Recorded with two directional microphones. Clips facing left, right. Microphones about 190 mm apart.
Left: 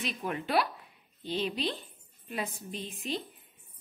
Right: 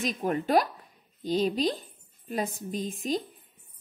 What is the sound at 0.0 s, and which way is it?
A woman's voice, 40° right (ahead or behind).